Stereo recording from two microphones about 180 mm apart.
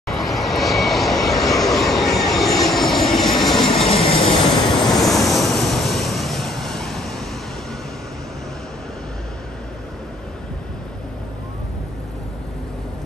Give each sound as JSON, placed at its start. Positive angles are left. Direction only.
{"t": 0.1, "sound": "vehicle", "side_deg": 0}
{"t": 3.1, "sound": "vehicle", "side_deg": 25}
{"t": 3.7, "sound": "train", "side_deg": 30}
{"t": 4.8, "sound": "vehicle", "side_deg": 0}